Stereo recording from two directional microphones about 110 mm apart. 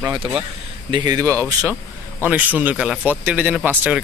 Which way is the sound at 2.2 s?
15° right (ahead or behind).